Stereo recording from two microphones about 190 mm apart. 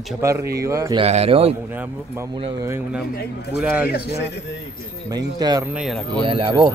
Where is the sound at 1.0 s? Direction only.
30° right (ahead or behind).